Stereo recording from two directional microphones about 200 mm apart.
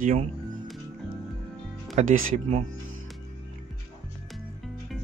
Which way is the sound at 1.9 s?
40° right (ahead or behind).